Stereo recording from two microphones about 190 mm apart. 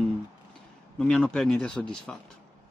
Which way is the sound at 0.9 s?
5° left (ahead or behind).